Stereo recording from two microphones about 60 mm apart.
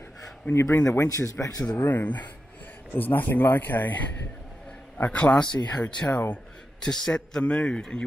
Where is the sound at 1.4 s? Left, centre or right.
Left.